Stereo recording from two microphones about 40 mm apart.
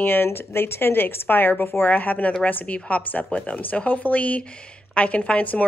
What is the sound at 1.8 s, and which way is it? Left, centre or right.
A woman's voice, left.